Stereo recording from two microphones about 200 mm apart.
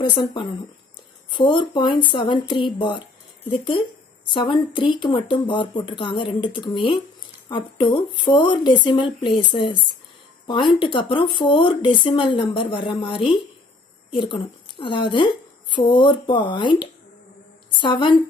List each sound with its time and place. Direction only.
0.2 s speech: 25° left (ahead or behind)